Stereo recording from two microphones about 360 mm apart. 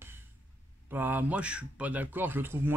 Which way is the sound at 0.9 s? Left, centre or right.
Centre.